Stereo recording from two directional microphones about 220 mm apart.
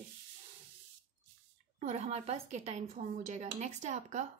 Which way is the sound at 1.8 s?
30° right (ahead or behind).